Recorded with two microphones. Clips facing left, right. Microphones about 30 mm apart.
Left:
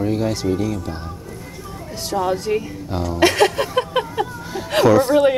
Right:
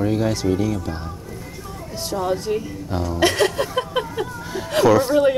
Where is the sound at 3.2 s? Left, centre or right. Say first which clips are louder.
Left 3 dB; left.